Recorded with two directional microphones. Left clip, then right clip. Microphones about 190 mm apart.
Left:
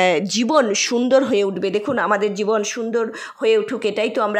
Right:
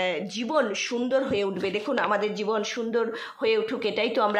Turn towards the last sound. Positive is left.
turn(degrees=30)  # may be behind; listen again after turning